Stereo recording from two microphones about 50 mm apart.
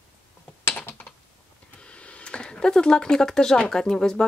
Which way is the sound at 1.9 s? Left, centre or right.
Left.